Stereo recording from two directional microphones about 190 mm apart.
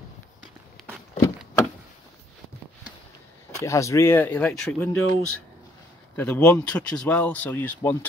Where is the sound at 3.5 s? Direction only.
15° left (ahead or behind).